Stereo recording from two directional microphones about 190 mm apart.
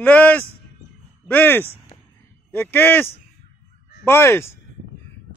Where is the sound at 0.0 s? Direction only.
5° left (ahead or behind).